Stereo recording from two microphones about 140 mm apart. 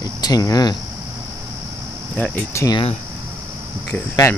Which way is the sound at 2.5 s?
20° left (ahead or behind).